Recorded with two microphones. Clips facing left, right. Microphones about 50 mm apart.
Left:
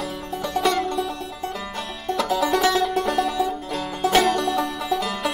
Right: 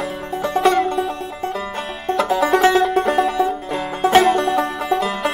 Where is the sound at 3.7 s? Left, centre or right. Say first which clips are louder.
Right 6 dB; right.